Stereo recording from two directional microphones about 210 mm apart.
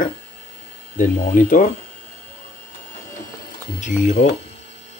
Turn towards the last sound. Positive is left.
turn(degrees=35)  # may be behind; listen again after turning